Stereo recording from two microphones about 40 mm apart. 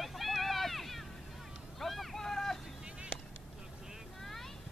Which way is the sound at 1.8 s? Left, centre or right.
Centre.